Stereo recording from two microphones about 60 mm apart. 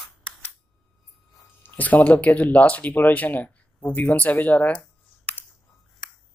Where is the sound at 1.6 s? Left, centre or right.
Left.